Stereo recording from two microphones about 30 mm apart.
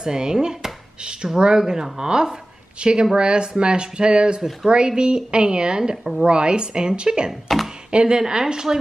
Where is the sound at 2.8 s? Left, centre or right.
Right.